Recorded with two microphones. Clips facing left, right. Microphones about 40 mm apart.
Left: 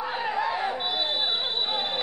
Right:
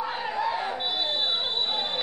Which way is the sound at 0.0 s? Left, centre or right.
Centre.